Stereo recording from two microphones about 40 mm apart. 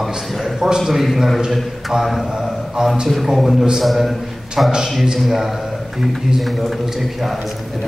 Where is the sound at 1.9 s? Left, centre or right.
Centre.